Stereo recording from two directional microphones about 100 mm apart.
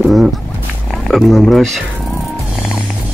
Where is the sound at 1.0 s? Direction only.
5° left (ahead or behind).